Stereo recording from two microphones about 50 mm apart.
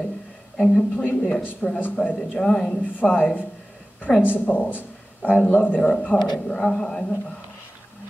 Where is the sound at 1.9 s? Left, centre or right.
Left.